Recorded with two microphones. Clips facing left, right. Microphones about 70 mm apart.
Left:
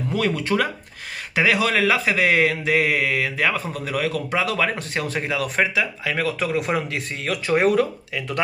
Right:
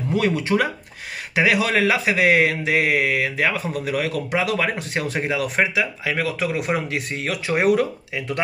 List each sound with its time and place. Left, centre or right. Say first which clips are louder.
0.1 s speech: right 2 dB; centre